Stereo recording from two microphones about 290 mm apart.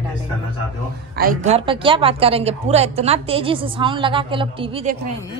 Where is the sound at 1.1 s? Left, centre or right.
Right.